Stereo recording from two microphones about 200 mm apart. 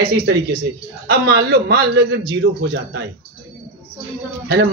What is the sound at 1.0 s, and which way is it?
A man's voice, 50° right (ahead or behind).